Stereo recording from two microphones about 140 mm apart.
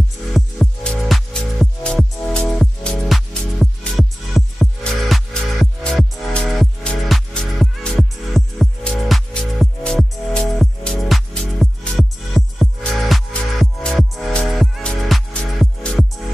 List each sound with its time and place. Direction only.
0.3 s music: centre (ahead or behind)